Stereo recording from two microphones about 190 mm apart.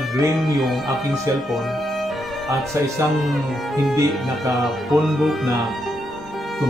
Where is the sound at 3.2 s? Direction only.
Centre (ahead or behind).